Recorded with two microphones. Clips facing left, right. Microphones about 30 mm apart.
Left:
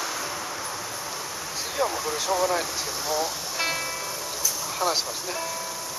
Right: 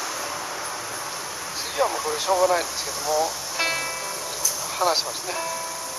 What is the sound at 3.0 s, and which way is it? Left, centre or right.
Speech, centre.